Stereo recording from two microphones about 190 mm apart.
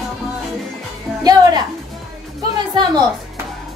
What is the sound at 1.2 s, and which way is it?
Music, 20° right (ahead or behind).